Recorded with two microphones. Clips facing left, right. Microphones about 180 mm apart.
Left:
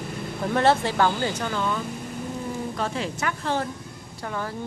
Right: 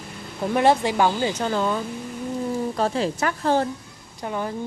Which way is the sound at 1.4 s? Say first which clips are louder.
Right 4 dB; 35° right (ahead or behind).